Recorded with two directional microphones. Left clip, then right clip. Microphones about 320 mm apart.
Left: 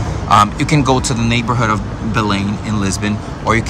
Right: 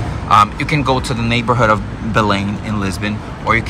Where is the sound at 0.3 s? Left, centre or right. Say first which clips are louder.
Even; centre.